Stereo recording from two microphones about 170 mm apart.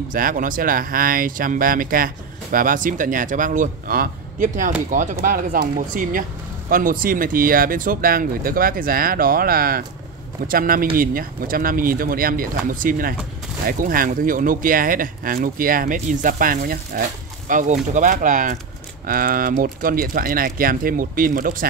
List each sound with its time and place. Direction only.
0.1 s speech: 55° right (ahead or behind)